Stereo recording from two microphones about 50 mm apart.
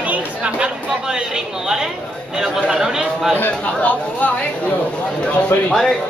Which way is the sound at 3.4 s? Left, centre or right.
Left.